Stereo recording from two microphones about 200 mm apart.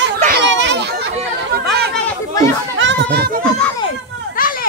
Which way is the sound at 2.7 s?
65° right (ahead or behind).